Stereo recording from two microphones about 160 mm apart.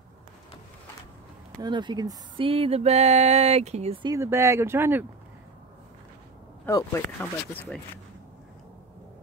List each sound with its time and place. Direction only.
1.6 s speech: 30° right (ahead or behind)
4.0 s speech: 20° right (ahead or behind)
6.6 s speech: 15° left (ahead or behind)